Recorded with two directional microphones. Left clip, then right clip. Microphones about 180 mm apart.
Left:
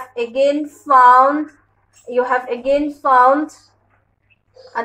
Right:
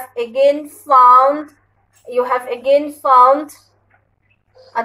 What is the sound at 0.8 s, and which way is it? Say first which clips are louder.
Speech: right 1 dB; 20° left (ahead or behind).